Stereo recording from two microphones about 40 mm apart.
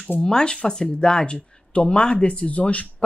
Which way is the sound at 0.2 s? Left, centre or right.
Centre.